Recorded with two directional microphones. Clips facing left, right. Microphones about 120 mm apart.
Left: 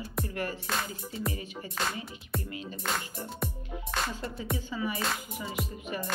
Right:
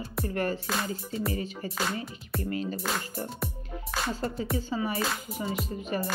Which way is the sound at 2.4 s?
45° right (ahead or behind).